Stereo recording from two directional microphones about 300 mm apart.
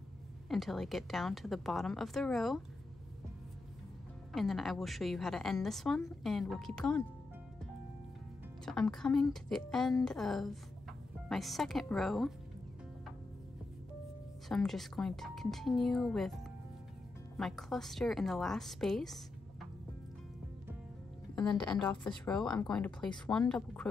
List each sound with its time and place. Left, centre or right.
0.5 s a woman's voice: centre
4.3 s a woman's voice: centre
8.6 s a woman's voice: centre
14.5 s a woman's voice: centre
17.4 s a woman's voice: centre
21.5 s a woman's voice: centre